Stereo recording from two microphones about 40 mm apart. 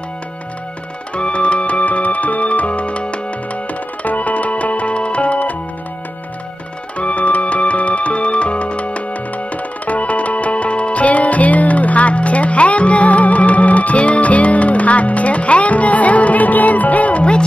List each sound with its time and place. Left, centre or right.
1.1 s music: left
4.0 s music: left
7.0 s music: left